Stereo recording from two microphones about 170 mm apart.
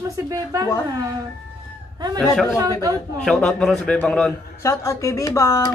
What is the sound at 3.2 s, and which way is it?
A man's voice, 5° left (ahead or behind).